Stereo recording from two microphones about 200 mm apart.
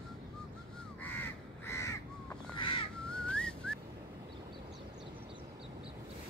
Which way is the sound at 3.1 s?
5° left (ahead or behind).